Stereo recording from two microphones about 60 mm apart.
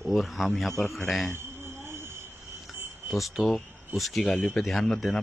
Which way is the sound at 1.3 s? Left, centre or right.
Right.